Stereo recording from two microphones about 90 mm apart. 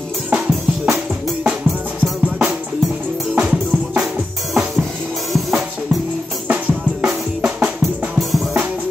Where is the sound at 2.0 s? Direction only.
15° right (ahead or behind).